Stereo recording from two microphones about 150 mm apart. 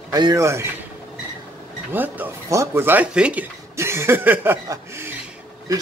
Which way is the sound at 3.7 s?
15° right (ahead or behind).